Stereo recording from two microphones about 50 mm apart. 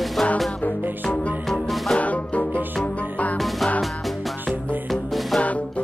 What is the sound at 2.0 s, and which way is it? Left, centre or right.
Music, left.